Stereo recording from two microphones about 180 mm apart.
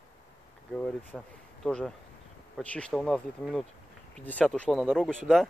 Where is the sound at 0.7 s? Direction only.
5° left (ahead or behind).